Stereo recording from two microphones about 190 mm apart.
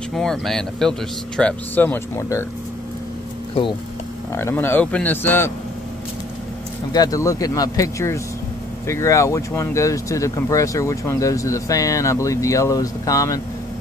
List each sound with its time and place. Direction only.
0.1 s speech: centre (ahead or behind)
4.3 s speech: 15° left (ahead or behind)
6.9 s speech: 20° left (ahead or behind)